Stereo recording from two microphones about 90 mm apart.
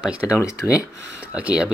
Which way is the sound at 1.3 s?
15° right (ahead or behind).